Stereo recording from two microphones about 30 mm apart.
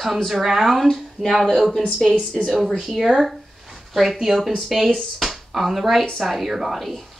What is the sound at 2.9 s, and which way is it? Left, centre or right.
Speech, centre.